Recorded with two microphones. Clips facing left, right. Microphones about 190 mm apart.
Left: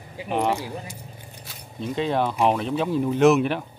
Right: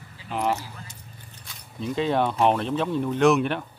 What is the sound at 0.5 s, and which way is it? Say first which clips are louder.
Speech: left 8 dB; 10° left (ahead or behind).